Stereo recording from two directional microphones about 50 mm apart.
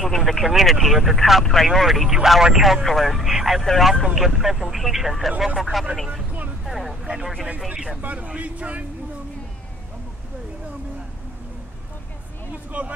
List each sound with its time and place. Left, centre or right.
0.0 s speech: centre
6.6 s a sound: centre
7.6 s speech: centre
8.0 s speech: right
12.7 s speech: right